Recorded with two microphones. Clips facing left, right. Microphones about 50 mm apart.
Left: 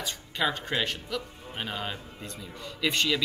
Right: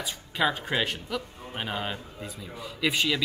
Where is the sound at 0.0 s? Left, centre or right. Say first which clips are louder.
Right 2 dB; centre.